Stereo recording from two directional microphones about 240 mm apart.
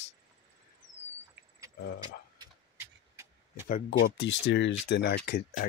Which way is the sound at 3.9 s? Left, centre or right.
Left.